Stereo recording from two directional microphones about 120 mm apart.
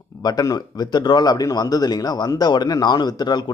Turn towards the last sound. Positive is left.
turn(degrees=35)  # may be behind; listen again after turning